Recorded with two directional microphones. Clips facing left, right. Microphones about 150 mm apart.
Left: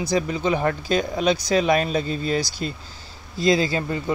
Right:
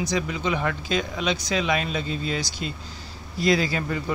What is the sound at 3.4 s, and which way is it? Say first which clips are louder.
Speech: left 2 dB; 25° left (ahead or behind).